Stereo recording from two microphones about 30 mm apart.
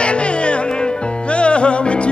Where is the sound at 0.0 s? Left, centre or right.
Left.